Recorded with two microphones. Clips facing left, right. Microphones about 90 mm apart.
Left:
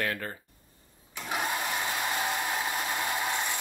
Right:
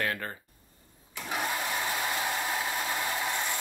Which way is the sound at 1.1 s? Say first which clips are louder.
Left 1 dB; 20° left (ahead or behind).